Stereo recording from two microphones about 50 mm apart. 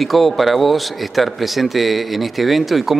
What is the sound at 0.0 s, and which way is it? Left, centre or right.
Speech, centre.